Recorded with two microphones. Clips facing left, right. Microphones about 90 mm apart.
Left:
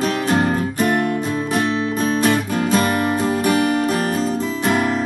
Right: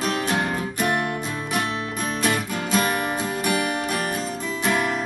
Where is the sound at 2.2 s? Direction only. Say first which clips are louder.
Left 6 dB; 40° left (ahead or behind).